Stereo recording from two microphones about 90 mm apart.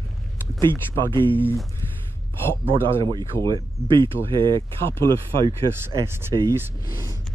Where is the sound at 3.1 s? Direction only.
50° right (ahead or behind).